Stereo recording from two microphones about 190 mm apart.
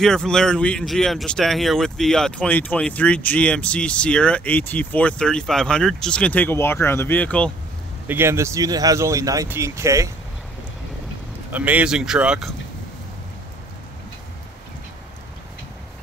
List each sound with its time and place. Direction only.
0.0 s speech: 5° left (ahead or behind)
8.1 s speech: 15° right (ahead or behind)
11.5 s speech: 10° right (ahead or behind)